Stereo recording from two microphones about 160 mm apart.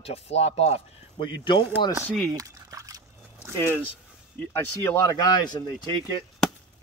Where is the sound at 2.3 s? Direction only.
20° right (ahead or behind).